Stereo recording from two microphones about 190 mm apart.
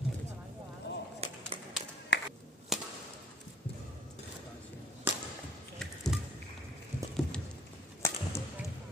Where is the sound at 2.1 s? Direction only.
60° left (ahead or behind).